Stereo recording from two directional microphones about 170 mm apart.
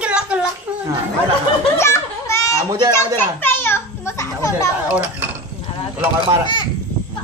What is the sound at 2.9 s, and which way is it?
Children playing, 15° left (ahead or behind).